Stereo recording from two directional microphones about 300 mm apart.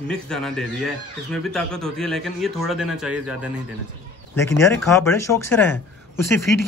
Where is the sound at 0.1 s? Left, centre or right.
Centre.